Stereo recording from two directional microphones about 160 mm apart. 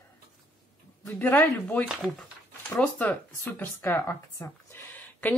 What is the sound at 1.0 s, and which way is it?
Speech, 15° left (ahead or behind).